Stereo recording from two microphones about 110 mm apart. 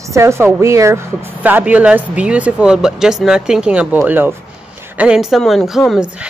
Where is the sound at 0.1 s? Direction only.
25° right (ahead or behind).